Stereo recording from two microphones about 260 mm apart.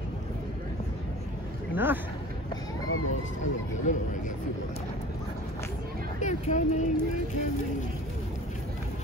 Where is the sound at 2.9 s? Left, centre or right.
Left.